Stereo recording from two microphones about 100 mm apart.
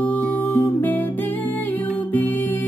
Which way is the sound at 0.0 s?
15° left (ahead or behind).